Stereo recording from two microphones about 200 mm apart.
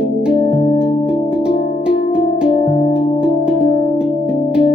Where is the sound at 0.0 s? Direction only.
5° right (ahead or behind).